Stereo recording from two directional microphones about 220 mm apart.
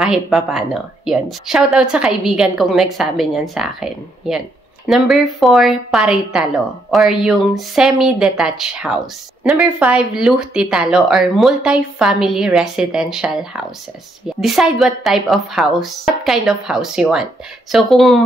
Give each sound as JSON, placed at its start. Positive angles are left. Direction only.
{"t": 0.0, "sound": "speech", "side_deg": 0}